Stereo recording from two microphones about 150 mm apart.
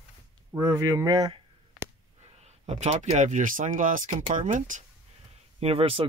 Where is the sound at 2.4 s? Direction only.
45° right (ahead or behind).